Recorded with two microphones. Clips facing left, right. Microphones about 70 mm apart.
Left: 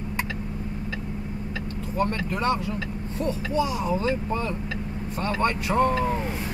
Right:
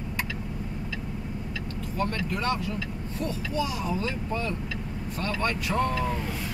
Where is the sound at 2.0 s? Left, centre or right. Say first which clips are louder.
Left 3 dB; left.